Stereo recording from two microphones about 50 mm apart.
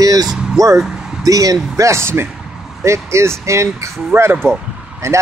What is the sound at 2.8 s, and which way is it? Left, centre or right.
Speech, right.